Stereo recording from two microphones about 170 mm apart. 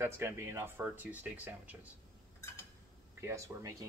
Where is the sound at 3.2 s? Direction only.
15° right (ahead or behind).